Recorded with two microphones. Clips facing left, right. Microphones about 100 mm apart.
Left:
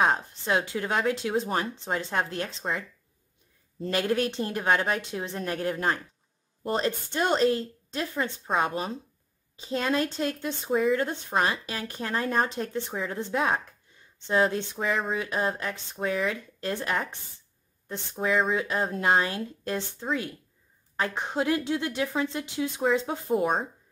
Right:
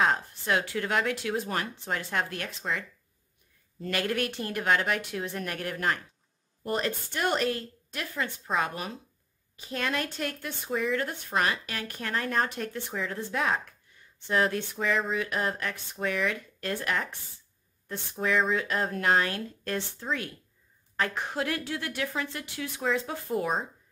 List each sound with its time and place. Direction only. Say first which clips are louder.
0.0 s speech: left 2 dB; 25° left (ahead or behind)
3.9 s speech: left 4 dB; 25° left (ahead or behind)